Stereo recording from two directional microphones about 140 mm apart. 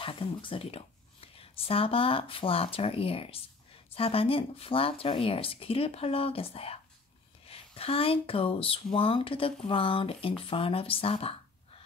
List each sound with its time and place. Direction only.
0.0 s speech: 40° left (ahead or behind)